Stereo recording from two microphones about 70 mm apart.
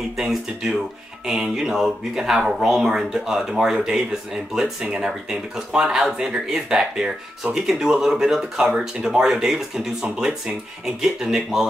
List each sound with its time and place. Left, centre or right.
0.2 s speech: centre
11.0 s speech: centre